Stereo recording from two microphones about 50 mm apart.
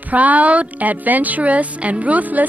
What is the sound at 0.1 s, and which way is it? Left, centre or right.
Speech, right.